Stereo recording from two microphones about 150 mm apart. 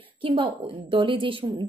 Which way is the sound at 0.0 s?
35° right (ahead or behind).